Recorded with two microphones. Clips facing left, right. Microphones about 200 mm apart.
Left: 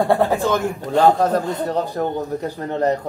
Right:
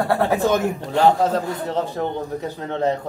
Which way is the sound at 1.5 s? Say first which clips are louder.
Left 2 dB; 10° left (ahead or behind).